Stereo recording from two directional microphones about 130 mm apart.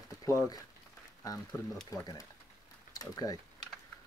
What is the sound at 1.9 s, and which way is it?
Speech, 25° left (ahead or behind).